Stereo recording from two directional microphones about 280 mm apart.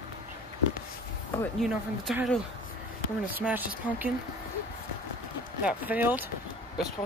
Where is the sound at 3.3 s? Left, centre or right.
Centre.